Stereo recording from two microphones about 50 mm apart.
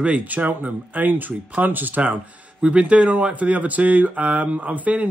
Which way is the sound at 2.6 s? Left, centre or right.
Right.